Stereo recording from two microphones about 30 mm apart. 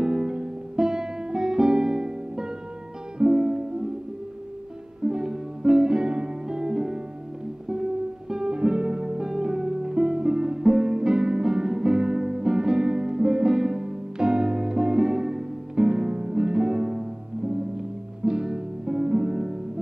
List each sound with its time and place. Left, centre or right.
0.0 s music: right
5.0 s music: right